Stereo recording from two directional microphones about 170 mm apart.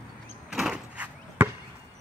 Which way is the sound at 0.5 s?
5° right (ahead or behind).